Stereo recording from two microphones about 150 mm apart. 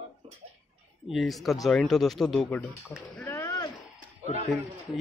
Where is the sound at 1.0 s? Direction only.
Centre (ahead or behind).